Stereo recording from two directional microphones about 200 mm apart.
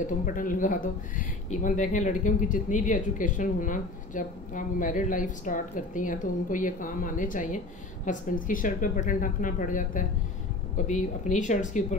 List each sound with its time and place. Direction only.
0.0 s speech: 40° left (ahead or behind)